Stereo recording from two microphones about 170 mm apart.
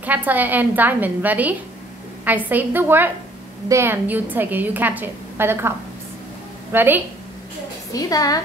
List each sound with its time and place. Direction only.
0.0 s a woman's voice: 10° right (ahead or behind)
7.9 s a woman's voice: 20° left (ahead or behind)